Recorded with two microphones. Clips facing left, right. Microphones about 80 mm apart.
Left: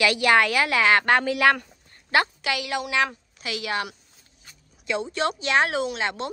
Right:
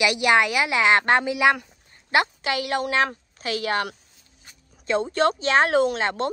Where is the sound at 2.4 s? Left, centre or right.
Right.